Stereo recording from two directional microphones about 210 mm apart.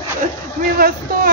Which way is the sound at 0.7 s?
45° right (ahead or behind).